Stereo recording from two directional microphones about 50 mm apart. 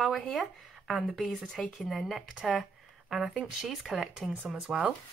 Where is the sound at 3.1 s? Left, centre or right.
Centre.